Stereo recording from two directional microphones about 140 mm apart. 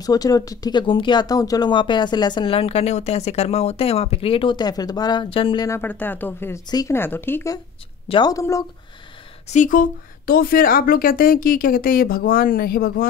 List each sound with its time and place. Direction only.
0.0 s speech: 25° left (ahead or behind)
5.7 s speech: 15° left (ahead or behind)
6.7 s speech: 25° left (ahead or behind)
7.0 s speech: 15° left (ahead or behind)
8.1 s speech: 30° left (ahead or behind)
9.5 s a woman's voice: 65° left (ahead or behind); by 13.1 s 90° left